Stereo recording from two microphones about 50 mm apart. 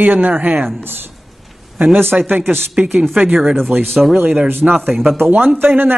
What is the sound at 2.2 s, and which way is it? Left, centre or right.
Speech, right.